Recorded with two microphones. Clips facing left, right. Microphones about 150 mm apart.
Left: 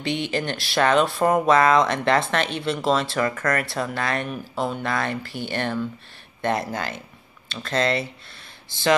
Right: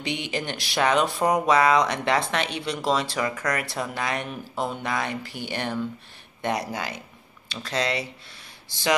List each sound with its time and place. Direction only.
0.0 s speech: 15° right (ahead or behind)